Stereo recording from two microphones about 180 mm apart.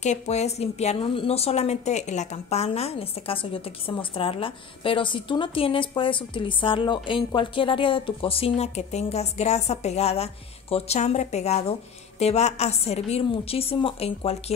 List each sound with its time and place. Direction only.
0.0 s a woman's voice: 40° left (ahead or behind)